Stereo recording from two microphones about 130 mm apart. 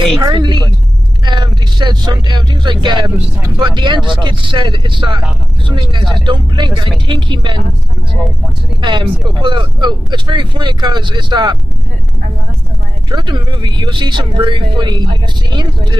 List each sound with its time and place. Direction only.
0.0 s speech: 35° right (ahead or behind)
1.2 s vehicle: 35° right (ahead or behind)
3.4 s speech: 30° right (ahead or behind)
8.8 s speech: 35° right (ahead or behind)
13.1 s speech: 35° right (ahead or behind)